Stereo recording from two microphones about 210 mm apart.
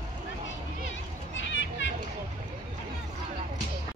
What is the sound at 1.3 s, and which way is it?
Children playing, 60° left (ahead or behind).